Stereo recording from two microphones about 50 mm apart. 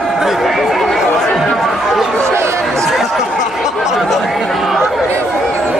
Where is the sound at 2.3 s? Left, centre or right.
Right.